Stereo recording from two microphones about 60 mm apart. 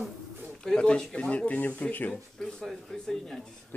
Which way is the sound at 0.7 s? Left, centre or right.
Centre.